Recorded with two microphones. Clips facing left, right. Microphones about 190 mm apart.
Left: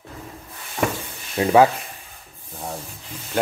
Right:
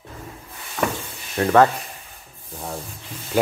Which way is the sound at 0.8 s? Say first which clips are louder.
Left 1 dB; 30° left (ahead or behind).